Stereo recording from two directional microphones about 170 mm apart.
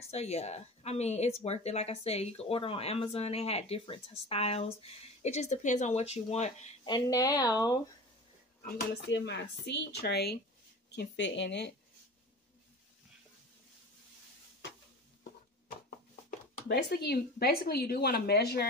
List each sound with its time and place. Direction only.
0.1 s speech: 40° left (ahead or behind)
6.8 s speech: 25° left (ahead or behind)
8.6 s speech: 85° left
11.0 s speech: 90° left
16.3 s speech: 65° left (ahead or behind)